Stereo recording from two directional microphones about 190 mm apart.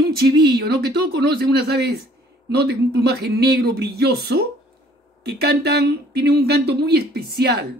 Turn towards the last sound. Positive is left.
turn(degrees=-60)  # may be behind; listen again after turning